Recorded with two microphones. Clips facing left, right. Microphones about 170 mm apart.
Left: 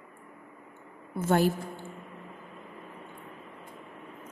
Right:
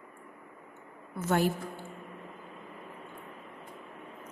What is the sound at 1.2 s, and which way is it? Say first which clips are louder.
Speech: left 3 dB; 30° left (ahead or behind).